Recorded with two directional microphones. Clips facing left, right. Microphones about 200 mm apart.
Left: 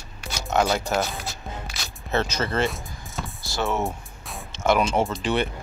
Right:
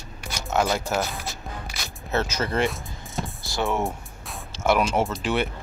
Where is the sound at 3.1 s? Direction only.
15° right (ahead or behind).